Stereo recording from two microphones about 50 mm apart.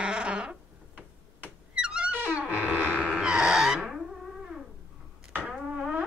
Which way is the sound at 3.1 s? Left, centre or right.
Centre.